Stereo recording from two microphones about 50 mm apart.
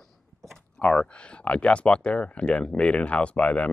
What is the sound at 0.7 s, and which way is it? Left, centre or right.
Speech, left.